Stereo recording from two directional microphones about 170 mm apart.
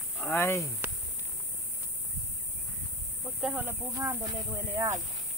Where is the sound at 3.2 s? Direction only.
5° right (ahead or behind).